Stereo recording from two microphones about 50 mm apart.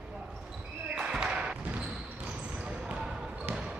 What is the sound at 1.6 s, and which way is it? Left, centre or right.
Basketball bounce, right.